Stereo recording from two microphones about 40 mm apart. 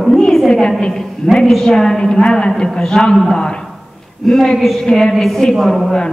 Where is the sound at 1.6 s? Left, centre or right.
Centre.